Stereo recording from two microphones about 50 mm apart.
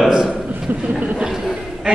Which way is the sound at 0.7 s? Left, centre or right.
Right.